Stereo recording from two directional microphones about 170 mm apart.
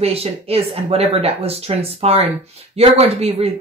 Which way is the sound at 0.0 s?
35° right (ahead or behind).